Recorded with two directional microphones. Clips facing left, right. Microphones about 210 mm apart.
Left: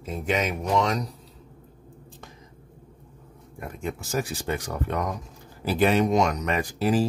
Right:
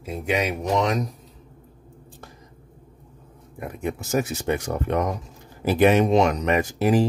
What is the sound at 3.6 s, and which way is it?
Speech, 15° right (ahead or behind).